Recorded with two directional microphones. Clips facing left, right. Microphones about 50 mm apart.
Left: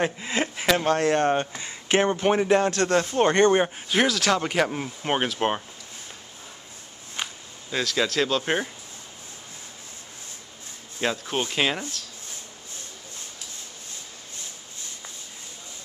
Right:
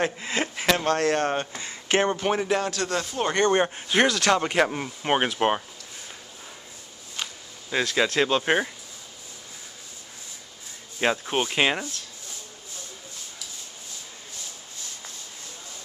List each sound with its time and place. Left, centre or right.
0.0 s speech: centre
2.7 s speech: left
3.3 s speech: centre
3.6 s speech: centre
7.2 s a sound: left
7.7 s speech: centre
11.0 s speech: centre